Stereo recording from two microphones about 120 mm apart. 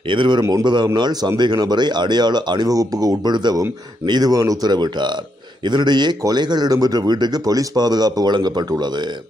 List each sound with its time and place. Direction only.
0.1 s a man's voice: 45° right (ahead or behind)
0.4 s a man's voice: 25° right (ahead or behind)